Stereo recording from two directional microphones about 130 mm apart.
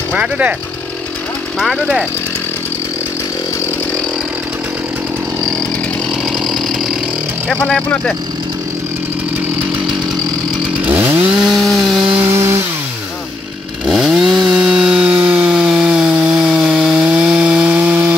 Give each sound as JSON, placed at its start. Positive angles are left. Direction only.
{"t": 0.1, "sound": "speech", "side_deg": -10}
{"t": 1.6, "sound": "speech", "side_deg": 0}
{"t": 6.4, "sound": "engine", "side_deg": 0}
{"t": 7.4, "sound": "speech", "side_deg": 5}
{"t": 10.9, "sound": "chainsaw", "side_deg": -15}
{"t": 11.3, "sound": "chainsaw", "side_deg": 0}
{"t": 12.2, "sound": "chainsaw", "side_deg": -20}
{"t": 13.8, "sound": "chainsaw", "side_deg": -5}